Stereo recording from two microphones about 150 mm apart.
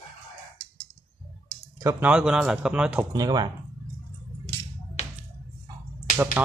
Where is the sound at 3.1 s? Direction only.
25° right (ahead or behind).